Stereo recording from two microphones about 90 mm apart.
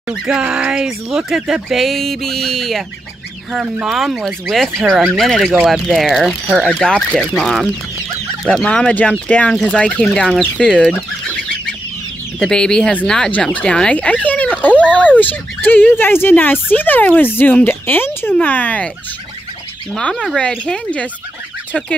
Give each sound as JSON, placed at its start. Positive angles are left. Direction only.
{"t": 0.1, "sound": "speech", "side_deg": -10}
{"t": 3.8, "sound": "speech", "side_deg": -5}
{"t": 6.7, "sound": "speech", "side_deg": 10}
{"t": 7.2, "sound": "speech", "side_deg": 0}
{"t": 12.4, "sound": "speech", "side_deg": 10}
{"t": 20.0, "sound": "speech", "side_deg": 10}